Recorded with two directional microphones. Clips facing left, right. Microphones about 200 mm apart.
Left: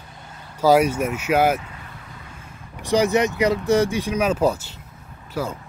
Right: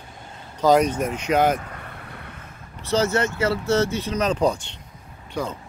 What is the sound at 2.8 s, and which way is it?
Speech, 15° left (ahead or behind).